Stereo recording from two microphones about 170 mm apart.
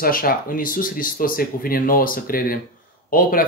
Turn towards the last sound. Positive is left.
turn(degrees=55)  # may be behind; listen again after turning